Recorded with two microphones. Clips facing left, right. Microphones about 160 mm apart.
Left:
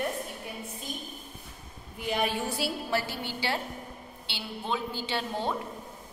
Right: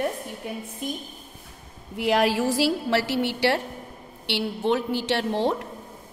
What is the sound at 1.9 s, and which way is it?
A woman's voice, 90° right.